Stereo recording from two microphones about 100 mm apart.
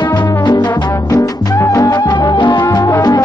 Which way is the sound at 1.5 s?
30° left (ahead or behind).